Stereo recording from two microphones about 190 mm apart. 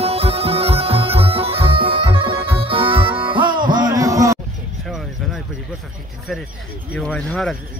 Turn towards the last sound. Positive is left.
turn(degrees=5)  # may be behind; listen again after turning